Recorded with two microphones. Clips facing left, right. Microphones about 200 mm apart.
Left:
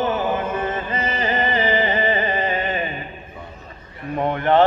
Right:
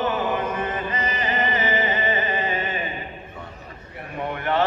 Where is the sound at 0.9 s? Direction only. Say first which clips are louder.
Left 3 dB; 25° left (ahead or behind).